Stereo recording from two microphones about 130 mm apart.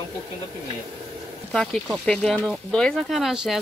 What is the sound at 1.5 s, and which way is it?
Speech, 5° left (ahead or behind).